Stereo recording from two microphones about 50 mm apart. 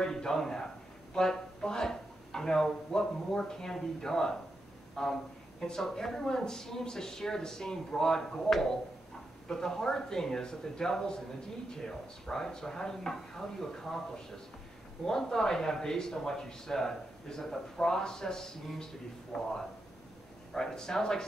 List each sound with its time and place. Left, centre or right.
0.0 s speech: centre
15.0 s speech: centre
20.5 s speech: centre